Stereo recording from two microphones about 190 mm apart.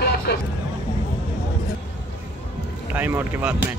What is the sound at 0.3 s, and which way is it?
Vehicle, 60° left (ahead or behind).